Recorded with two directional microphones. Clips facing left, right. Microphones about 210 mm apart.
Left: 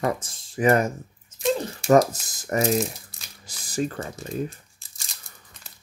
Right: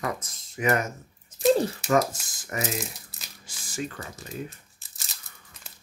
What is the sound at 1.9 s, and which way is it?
Speech, 40° left (ahead or behind).